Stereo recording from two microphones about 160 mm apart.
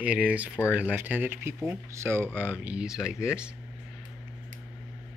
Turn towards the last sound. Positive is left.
turn(degrees=-5)  # may be behind; listen again after turning